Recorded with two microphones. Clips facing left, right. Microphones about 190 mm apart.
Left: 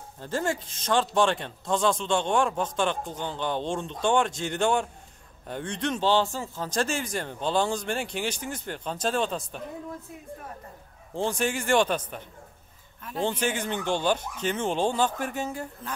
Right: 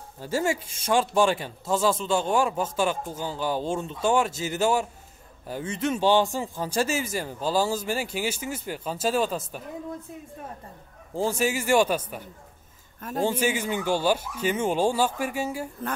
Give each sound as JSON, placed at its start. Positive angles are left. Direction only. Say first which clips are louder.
{"t": 0.2, "sound": "speech", "louder": "right 3 dB", "side_deg": -10}
{"t": 11.1, "sound": "speech", "louder": "right 2 dB", "side_deg": -5}